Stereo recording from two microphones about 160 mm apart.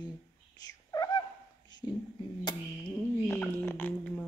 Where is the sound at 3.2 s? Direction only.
15° left (ahead or behind).